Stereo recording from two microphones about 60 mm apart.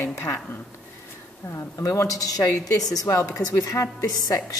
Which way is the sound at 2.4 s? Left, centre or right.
Left.